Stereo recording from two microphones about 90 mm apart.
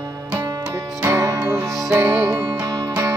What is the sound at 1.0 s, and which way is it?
Music, 30° right (ahead or behind).